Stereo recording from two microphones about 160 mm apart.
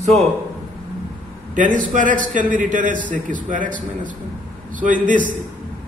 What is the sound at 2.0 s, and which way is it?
A man's voice, 55° right (ahead or behind).